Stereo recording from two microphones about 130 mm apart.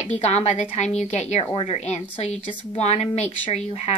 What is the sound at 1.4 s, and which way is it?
Speech, 45° left (ahead or behind).